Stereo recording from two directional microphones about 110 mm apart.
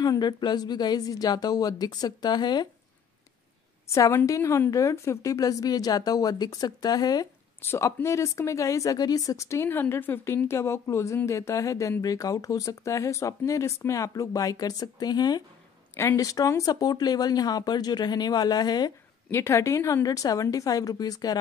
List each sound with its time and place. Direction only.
0.0 s speech: 35° left (ahead or behind)
3.9 s speech: 30° left (ahead or behind)
7.6 s speech: 25° left (ahead or behind)
19.3 s speech: 25° left (ahead or behind)